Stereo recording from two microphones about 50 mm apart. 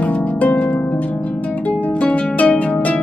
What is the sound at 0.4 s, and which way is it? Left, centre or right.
Harp, left.